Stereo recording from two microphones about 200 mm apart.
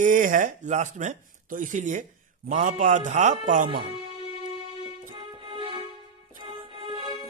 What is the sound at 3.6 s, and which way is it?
Speech, 25° right (ahead or behind).